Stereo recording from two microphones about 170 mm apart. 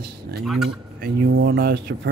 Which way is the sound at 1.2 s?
65° right (ahead or behind).